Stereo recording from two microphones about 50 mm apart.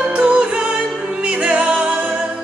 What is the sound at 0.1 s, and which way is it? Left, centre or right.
Music, right.